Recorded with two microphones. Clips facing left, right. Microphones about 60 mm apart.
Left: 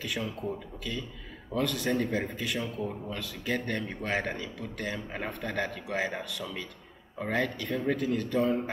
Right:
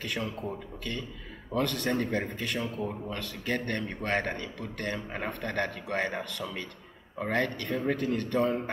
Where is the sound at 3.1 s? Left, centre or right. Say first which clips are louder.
Left 1 dB; centre.